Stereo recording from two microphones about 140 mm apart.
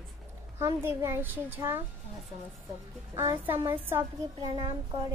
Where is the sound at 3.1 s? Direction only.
20° right (ahead or behind).